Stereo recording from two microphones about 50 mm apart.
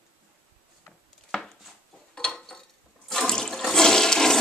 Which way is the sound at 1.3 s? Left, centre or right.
Centre.